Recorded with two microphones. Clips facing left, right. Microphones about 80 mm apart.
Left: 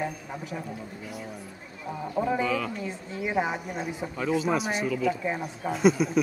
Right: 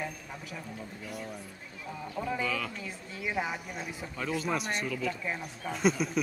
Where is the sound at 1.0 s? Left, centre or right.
Centre.